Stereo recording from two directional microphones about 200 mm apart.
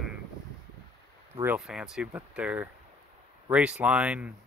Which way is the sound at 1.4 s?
5° right (ahead or behind).